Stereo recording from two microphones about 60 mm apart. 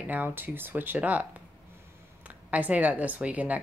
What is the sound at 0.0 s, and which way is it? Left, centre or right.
Speech, right.